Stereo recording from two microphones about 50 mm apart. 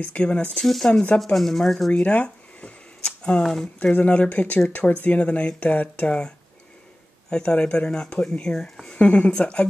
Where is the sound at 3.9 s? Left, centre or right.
Left.